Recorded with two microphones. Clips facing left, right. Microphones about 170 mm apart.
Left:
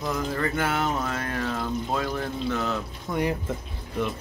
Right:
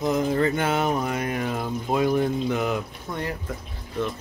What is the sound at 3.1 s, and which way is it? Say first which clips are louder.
Speech: left 4 dB; centre (ahead or behind).